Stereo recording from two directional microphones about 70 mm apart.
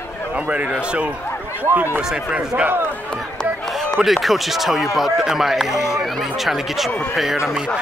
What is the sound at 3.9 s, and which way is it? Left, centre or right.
Speech, centre.